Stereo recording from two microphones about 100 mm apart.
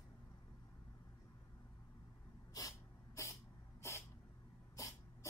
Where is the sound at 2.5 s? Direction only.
35° left (ahead or behind).